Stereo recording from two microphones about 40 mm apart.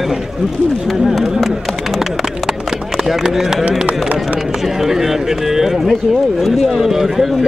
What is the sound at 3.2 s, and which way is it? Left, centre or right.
Speech, centre.